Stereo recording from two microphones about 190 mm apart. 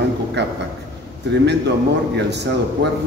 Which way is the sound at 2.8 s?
60° right (ahead or behind).